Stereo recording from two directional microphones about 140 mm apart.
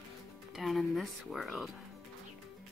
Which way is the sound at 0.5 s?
Centre (ahead or behind).